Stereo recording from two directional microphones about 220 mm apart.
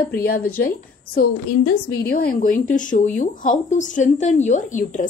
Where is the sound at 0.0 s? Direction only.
45° left (ahead or behind).